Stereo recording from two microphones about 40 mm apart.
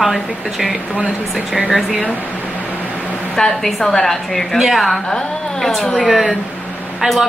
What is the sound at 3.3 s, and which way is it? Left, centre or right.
A woman's voice, centre.